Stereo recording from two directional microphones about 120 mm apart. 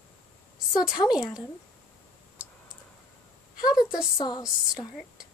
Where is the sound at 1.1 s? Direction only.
5° right (ahead or behind).